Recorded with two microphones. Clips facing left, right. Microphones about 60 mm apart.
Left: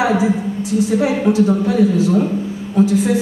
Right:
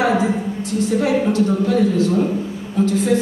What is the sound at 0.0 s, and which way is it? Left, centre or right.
A woman's voice, centre.